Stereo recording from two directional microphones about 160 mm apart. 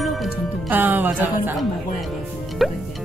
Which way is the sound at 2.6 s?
Centre (ahead or behind).